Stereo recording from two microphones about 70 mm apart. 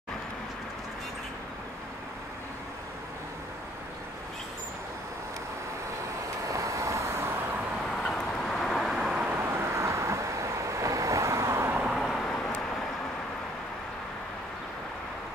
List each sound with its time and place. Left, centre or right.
6.4 s vehicle: right
7.9 s vehicle: centre
9.4 s vehicle: right
11.9 s vehicle: centre